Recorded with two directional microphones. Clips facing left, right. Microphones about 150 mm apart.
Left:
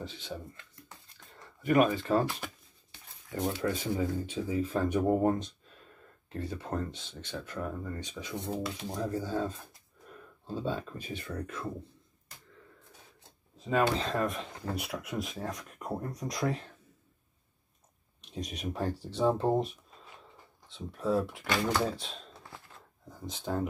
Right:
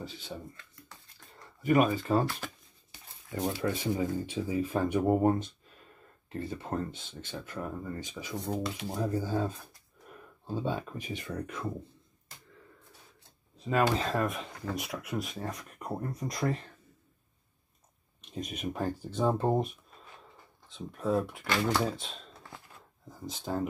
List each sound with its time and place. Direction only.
1.7 s speech: 10° right (ahead or behind)
2.9 s a sound: centre (ahead or behind)
3.6 s speech: 15° right (ahead or behind)
6.9 s speech: 50° right (ahead or behind)
7.4 s speech: 5° right (ahead or behind)
13.7 s speech: centre (ahead or behind)
18.2 s speech: centre (ahead or behind)